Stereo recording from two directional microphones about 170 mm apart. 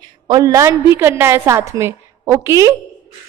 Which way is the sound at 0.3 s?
20° right (ahead or behind).